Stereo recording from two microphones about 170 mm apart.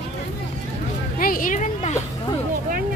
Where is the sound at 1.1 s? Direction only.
55° left (ahead or behind).